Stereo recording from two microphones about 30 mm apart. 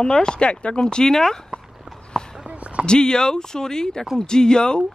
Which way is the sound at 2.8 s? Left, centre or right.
Left.